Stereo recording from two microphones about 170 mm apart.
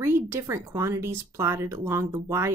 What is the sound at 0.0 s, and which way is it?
A woman's voice, 15° right (ahead or behind).